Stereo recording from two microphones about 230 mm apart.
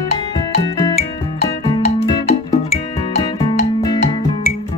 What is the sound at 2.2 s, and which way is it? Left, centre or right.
Music, left.